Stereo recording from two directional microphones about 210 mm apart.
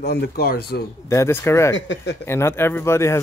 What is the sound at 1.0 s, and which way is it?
Speech, 15° left (ahead or behind).